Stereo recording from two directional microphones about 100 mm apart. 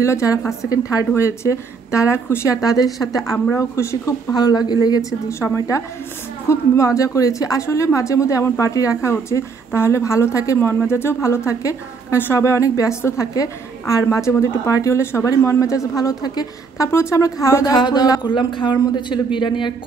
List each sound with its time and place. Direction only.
0.0 s speech: 30° left (ahead or behind)
17.7 s speech: 45° left (ahead or behind)
18.3 s speech: 50° left (ahead or behind)